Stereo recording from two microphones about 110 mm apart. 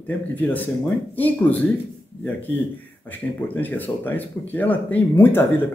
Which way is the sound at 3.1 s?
15° left (ahead or behind).